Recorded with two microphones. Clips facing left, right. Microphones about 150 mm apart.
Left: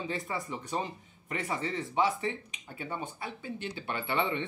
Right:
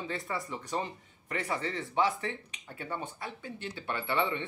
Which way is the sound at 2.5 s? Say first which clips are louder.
Even; 10° left (ahead or behind).